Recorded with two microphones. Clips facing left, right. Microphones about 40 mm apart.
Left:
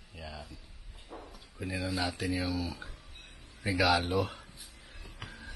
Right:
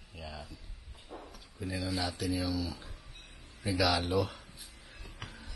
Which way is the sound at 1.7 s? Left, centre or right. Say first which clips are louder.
Left 1 dB; left.